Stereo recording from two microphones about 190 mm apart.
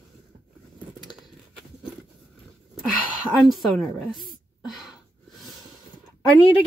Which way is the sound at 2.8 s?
Centre (ahead or behind).